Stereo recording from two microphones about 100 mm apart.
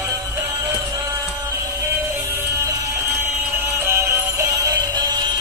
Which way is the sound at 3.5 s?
25° right (ahead or behind).